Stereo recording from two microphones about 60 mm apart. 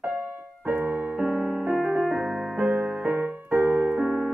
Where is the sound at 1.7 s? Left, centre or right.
Centre.